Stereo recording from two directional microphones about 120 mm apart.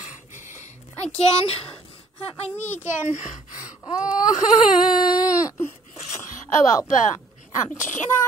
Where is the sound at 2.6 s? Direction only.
75° left (ahead or behind).